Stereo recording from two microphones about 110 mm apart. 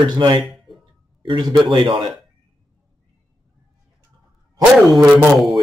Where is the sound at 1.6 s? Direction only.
50° right (ahead or behind).